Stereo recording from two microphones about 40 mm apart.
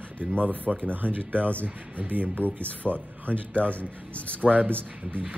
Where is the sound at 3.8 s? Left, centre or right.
Left.